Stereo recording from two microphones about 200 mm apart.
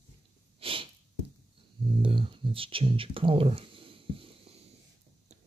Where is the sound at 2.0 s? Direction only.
25° right (ahead or behind).